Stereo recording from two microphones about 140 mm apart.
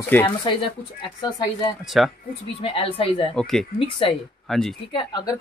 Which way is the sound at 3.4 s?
5° left (ahead or behind).